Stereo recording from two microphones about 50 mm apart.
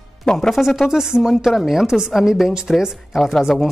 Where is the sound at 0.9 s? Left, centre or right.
Centre.